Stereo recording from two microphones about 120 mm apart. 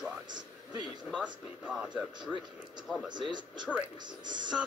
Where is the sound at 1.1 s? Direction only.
10° right (ahead or behind).